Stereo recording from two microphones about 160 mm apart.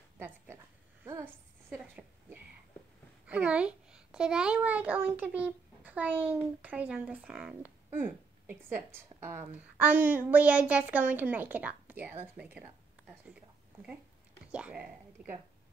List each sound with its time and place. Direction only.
1.0 s a sound: 15° right (ahead or behind)
3.3 s a child's voice: 5° right (ahead or behind)
14.5 s speech: 5° right (ahead or behind)